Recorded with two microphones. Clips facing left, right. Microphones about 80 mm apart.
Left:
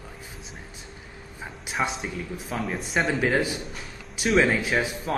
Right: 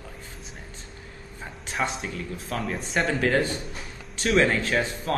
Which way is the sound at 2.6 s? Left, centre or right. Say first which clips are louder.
Left 1 dB; centre.